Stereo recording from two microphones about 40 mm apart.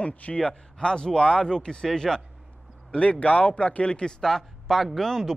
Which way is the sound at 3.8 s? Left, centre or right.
Left.